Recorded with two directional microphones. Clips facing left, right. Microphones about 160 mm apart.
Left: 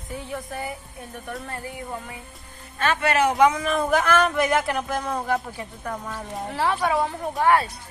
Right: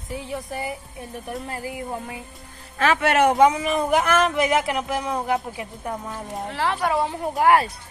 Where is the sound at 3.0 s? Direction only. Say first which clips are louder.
Right 2 dB; 65° right (ahead or behind).